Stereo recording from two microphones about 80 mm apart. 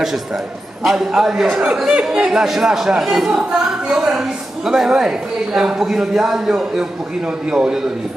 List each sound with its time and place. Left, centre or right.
0.8 s a man's voice: centre